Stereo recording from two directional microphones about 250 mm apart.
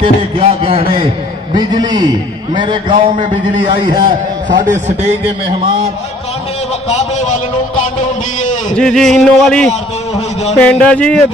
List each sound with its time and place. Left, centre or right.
0.0 s a man's voice: right
2.9 s a man's voice: right
8.7 s a man's voice: centre
10.1 s speech: left
10.6 s a man's voice: centre